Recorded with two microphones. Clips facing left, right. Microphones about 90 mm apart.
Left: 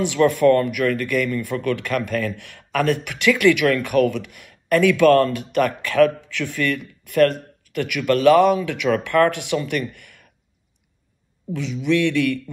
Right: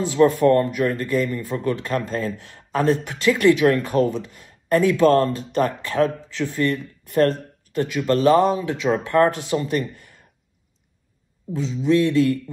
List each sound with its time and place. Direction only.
0.1 s speech: 30° right (ahead or behind)
11.5 s speech: 30° right (ahead or behind)